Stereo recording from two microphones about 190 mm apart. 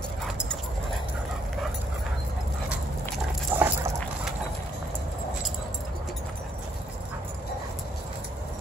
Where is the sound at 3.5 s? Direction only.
10° right (ahead or behind).